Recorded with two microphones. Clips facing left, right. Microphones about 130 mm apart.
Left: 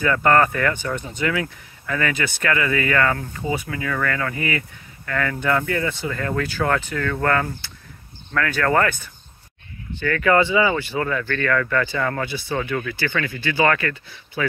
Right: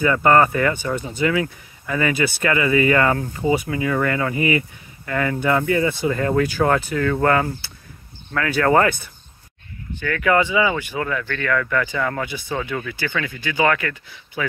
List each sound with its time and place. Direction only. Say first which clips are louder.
0.0 s speech: right 2 dB; 10° right (ahead or behind)
6.0 s speech: right 6 dB; 25° right (ahead or behind); by 12.3 s 5° right (ahead or behind)
12.7 s speech: left 1 dB; 15° right (ahead or behind)